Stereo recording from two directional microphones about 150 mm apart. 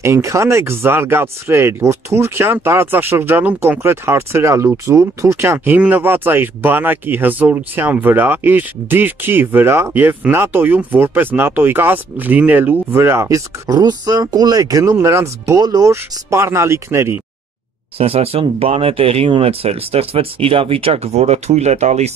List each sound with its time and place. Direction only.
0.0 s speech: 20° right (ahead or behind)
17.9 s speech: 40° right (ahead or behind)